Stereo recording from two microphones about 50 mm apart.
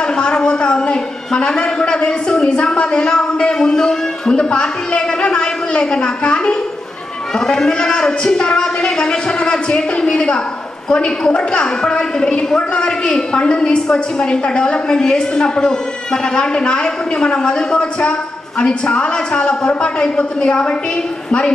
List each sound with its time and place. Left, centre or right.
0.0 s a man's voice: centre